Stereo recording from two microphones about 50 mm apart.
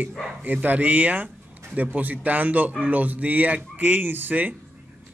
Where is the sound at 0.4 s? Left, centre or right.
Right.